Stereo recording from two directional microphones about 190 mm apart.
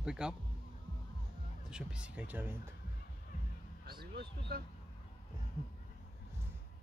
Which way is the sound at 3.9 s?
55° right (ahead or behind).